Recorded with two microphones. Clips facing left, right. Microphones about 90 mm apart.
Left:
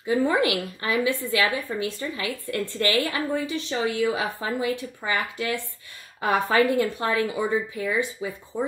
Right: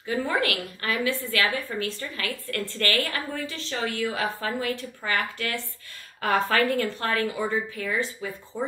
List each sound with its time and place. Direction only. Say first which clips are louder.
0.0 s a woman's voice: left 4 dB; 20° left (ahead or behind)